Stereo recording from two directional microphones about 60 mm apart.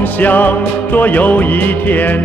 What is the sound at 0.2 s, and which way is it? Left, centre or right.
Music, left.